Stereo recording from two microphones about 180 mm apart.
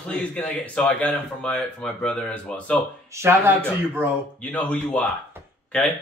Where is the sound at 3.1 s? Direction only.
15° right (ahead or behind).